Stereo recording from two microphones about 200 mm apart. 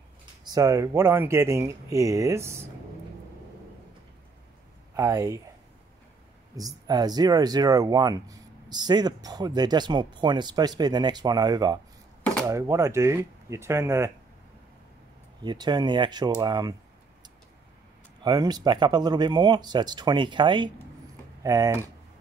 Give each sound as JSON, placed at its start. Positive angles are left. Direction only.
{"t": 0.5, "sound": "speech", "side_deg": -15}
{"t": 4.9, "sound": "speech", "side_deg": -15}
{"t": 6.9, "sound": "speech", "side_deg": -20}
{"t": 15.4, "sound": "speech", "side_deg": -20}
{"t": 18.2, "sound": "speech", "side_deg": -20}